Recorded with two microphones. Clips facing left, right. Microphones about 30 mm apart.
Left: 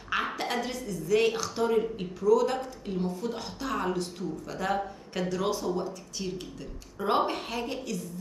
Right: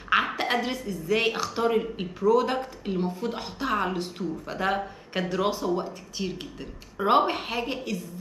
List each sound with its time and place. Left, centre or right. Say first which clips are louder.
0.1 s a woman's voice: right 6 dB; right